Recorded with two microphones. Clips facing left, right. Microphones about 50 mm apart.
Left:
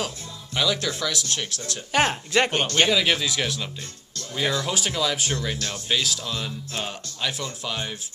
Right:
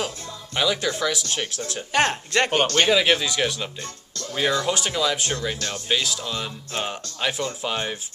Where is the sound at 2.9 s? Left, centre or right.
Centre.